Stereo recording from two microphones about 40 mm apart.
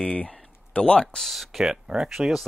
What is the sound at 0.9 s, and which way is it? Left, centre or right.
Speech, centre.